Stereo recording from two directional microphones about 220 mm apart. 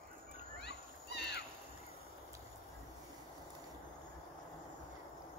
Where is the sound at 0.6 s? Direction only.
50° left (ahead or behind).